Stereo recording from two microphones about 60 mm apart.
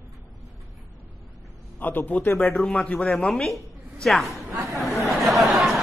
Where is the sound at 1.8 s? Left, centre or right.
Left.